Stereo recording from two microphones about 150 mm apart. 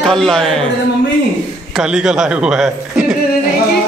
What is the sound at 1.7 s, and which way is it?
A man's voice, 5° right (ahead or behind).